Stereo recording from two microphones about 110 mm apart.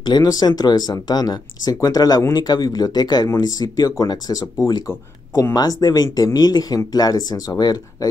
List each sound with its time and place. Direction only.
0.0 s speech: 40° left (ahead or behind)